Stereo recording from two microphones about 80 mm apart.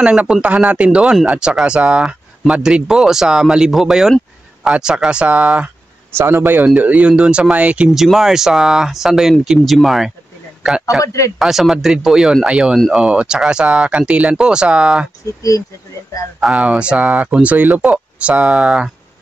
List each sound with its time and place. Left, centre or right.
0.0 s speech: centre
6.1 s speech: right
7.9 s a man's voice: centre
11.0 s speech: left
11.3 s speech: centre
16.5 s speech: centre